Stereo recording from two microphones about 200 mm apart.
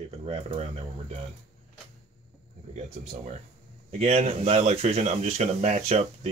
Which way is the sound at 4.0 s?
30° right (ahead or behind).